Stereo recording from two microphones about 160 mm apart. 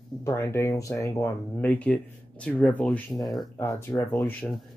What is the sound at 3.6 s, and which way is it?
Speech, 20° left (ahead or behind).